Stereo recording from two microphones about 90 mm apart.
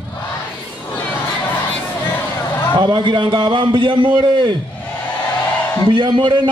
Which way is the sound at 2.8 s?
60° right (ahead or behind).